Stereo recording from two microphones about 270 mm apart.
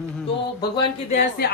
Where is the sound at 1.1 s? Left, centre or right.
Left.